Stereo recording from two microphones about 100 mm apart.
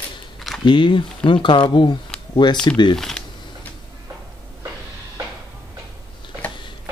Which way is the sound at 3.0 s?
5° left (ahead or behind).